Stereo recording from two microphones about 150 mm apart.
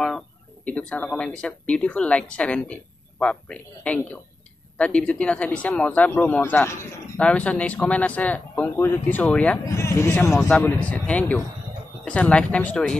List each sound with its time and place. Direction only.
0.7 s speech: 10° left (ahead or behind)
9.7 s speech: 20° left (ahead or behind)